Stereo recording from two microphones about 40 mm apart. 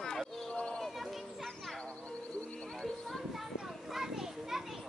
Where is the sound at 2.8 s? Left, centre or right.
Centre.